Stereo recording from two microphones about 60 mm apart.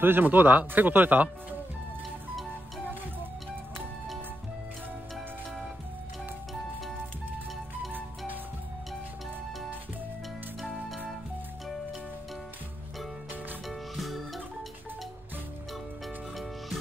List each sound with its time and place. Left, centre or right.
0.0 s speech: right
13.7 s music: centre